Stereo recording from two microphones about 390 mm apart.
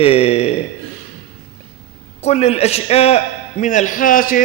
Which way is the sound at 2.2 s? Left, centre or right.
Centre.